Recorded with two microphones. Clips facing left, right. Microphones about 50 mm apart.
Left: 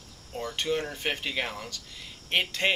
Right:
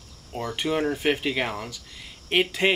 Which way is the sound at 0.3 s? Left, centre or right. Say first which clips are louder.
Right 3 dB; centre.